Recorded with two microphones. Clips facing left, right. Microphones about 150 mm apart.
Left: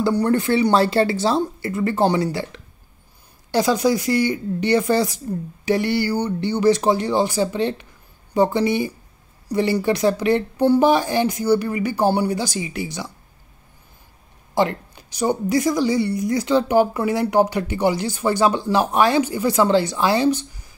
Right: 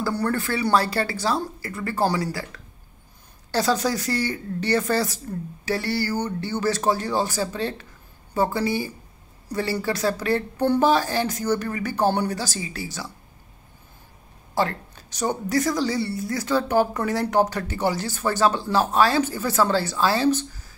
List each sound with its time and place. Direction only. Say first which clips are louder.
0.0 s a woman's voice: left 6 dB; 20° left (ahead or behind)
14.5 s a woman's voice: left 4 dB; 15° left (ahead or behind)